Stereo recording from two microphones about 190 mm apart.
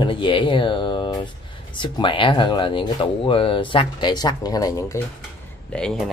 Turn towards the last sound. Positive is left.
turn(degrees=5)  # may be behind; listen again after turning